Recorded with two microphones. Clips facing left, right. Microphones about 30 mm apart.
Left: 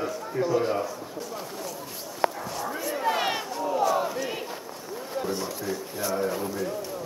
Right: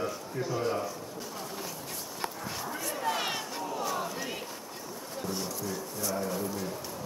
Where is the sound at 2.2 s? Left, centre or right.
Left.